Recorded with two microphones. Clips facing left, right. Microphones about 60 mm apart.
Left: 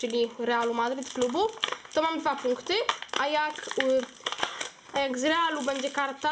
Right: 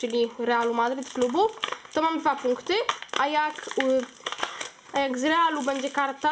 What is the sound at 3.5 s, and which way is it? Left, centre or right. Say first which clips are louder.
Speech: right 2 dB; centre.